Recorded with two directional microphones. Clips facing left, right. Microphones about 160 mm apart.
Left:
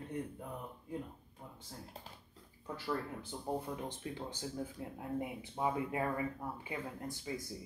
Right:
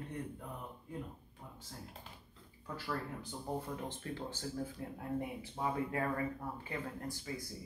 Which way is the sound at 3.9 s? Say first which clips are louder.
Even; 15° left (ahead or behind).